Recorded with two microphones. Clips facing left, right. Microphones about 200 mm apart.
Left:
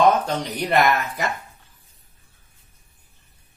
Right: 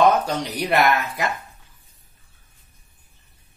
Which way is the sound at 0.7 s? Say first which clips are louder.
Even; centre (ahead or behind).